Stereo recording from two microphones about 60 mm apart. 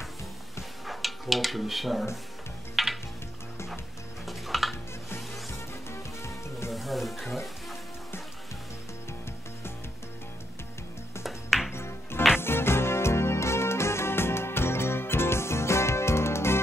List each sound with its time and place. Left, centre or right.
0.8 s speech: centre
2.7 s music: centre
4.3 s music: centre
5.5 s music: left
6.7 s music: centre
11.2 s music: centre
11.7 s music: left